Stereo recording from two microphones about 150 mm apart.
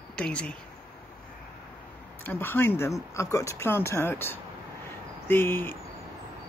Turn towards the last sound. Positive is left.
turn(degrees=15)  # may be behind; listen again after turning